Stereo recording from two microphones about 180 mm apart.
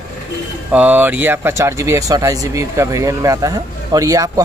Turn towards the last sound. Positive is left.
turn(degrees=-20)  # may be behind; listen again after turning